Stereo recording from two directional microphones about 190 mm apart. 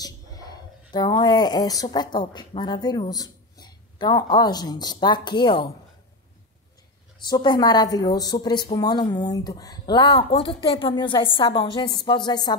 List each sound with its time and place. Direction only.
0.0 s speech: 20° left (ahead or behind)
7.2 s speech: 20° left (ahead or behind)